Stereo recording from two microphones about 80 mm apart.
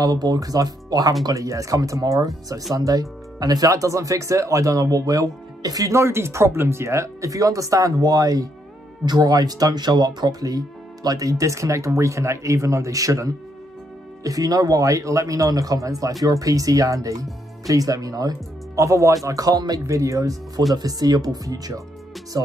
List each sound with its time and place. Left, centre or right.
0.0 s speech: right
5.9 s speech: right